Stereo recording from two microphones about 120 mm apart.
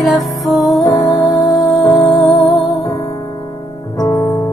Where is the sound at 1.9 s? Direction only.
25° left (ahead or behind).